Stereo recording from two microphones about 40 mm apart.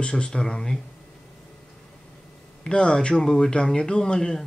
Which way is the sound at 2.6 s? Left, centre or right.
Left.